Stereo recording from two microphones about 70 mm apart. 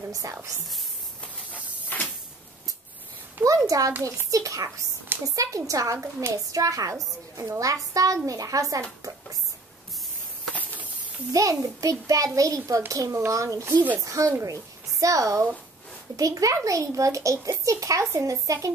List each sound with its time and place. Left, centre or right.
0.1 s a child's voice: right
1.2 s hiss: centre
3.4 s a child's voice: right
10.5 s a sound: left
11.3 s a child's voice: right